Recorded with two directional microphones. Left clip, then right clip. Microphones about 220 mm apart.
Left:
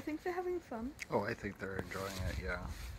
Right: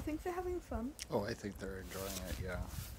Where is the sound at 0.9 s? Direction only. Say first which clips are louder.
Left 3 dB; 5° right (ahead or behind).